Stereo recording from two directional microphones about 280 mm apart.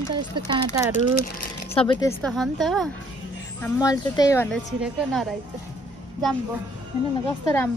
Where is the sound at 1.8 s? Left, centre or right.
Centre.